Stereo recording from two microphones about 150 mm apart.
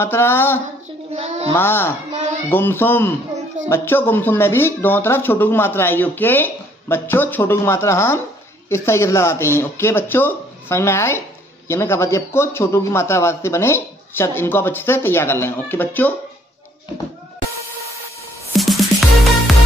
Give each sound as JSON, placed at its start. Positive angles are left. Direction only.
{"t": 0.0, "sound": "speech", "side_deg": 15}
{"t": 1.1, "sound": "a sound", "side_deg": -45}
{"t": 1.5, "sound": "speech", "side_deg": 15}
{"t": 18.6, "sound": "music", "side_deg": 0}